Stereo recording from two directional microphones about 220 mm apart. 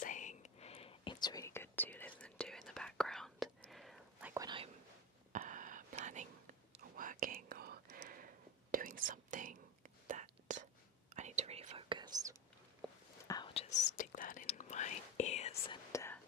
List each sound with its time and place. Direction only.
0.0 s whispering: 35° left (ahead or behind); by 4.3 s centre (ahead or behind)
4.3 s whispering: 20° right (ahead or behind)
5.3 s whispering: 35° right (ahead or behind); by 12.4 s 20° right (ahead or behind)
13.3 s whispering: 25° left (ahead or behind)
13.8 s whispering: 35° left (ahead or behind)
15.9 s whispering: 15° left (ahead or behind)